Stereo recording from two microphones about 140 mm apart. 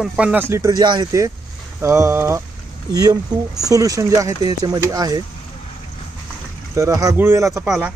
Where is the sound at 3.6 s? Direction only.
25° right (ahead or behind).